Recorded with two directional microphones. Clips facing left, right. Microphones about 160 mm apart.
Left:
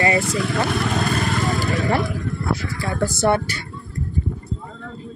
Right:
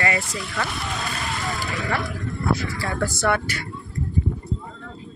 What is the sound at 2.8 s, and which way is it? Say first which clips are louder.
Speech: left 3 dB; 20° left (ahead or behind).